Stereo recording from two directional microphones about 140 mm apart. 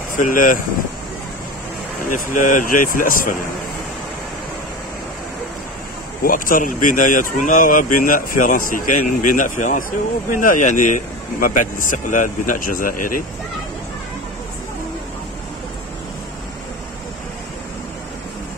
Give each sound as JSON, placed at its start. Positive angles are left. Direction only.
{"t": 0.1, "sound": "speech", "side_deg": 75}
{"t": 2.1, "sound": "speech", "side_deg": 65}
{"t": 6.2, "sound": "speech", "side_deg": 80}